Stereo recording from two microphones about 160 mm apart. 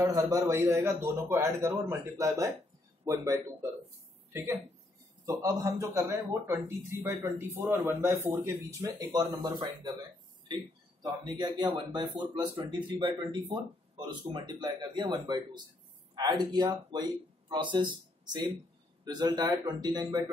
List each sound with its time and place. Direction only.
0.0 s a man's voice: 20° right (ahead or behind)
19.0 s speech: 25° right (ahead or behind)